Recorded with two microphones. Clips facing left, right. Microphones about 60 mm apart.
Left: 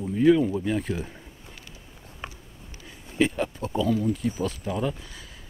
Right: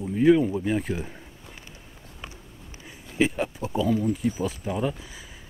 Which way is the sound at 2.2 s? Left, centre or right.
Left.